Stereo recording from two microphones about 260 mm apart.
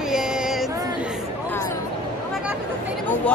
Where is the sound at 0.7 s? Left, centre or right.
Centre.